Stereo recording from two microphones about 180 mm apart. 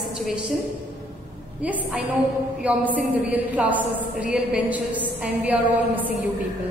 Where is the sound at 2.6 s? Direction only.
10° right (ahead or behind).